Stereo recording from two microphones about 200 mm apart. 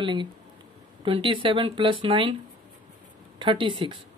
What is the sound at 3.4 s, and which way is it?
Speech, 25° right (ahead or behind).